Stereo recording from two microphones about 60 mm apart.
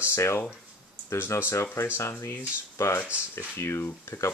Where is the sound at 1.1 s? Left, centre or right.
Left.